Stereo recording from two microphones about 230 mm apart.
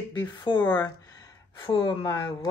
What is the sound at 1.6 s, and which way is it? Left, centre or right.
Speech, centre.